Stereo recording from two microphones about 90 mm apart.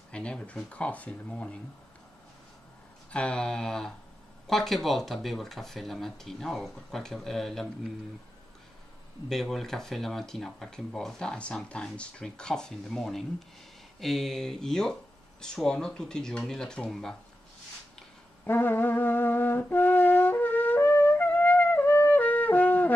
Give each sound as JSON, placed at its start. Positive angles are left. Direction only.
{"t": 0.1, "sound": "speech", "side_deg": 10}
{"t": 3.1, "sound": "speech", "side_deg": 10}
{"t": 9.3, "sound": "speech", "side_deg": 5}
{"t": 18.4, "sound": "music", "side_deg": 20}